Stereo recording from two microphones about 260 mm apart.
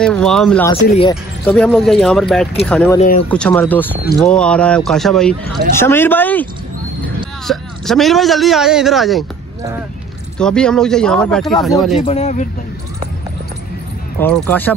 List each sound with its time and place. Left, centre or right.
0.0 s a man's voice: centre
7.4 s a man's voice: centre
10.4 s a man's voice: centre
12.1 s speech: left
14.2 s a man's voice: centre